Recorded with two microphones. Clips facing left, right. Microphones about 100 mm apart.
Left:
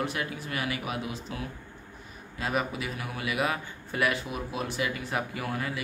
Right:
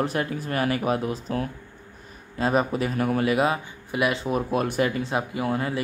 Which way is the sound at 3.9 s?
20° right (ahead or behind).